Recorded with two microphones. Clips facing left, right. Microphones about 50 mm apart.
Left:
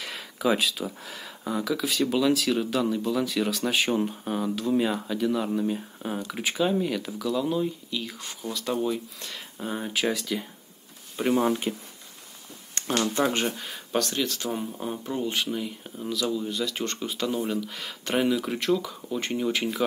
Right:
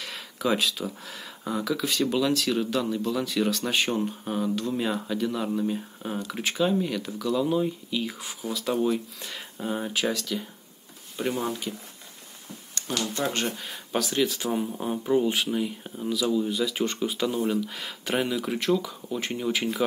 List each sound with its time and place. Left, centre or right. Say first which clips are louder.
0.0 s speech: left 2 dB; centre
12.7 s a sound: left 4 dB; left
13.2 s speech: left 2 dB; centre
13.6 s speech: left 1 dB; centre